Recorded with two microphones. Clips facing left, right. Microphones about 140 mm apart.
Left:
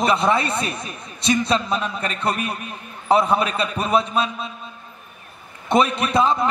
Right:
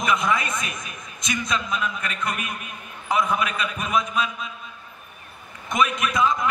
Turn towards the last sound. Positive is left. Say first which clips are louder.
# left 4 dB
turn(degrees=30)  # may be behind; listen again after turning